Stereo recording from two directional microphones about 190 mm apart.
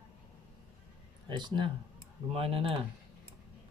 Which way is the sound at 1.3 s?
25° right (ahead or behind).